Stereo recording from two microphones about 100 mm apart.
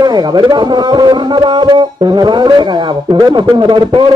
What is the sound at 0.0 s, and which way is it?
Speech, 45° right (ahead or behind).